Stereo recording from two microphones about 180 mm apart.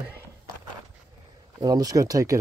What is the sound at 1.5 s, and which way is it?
Speech, 20° right (ahead or behind).